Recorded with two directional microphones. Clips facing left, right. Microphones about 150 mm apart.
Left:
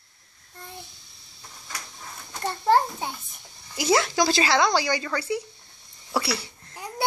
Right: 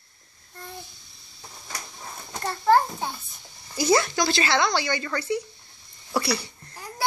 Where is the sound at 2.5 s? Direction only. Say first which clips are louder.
Right 1 dB; 25° left (ahead or behind).